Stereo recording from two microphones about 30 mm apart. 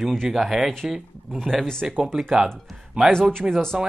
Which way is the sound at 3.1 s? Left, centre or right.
Left.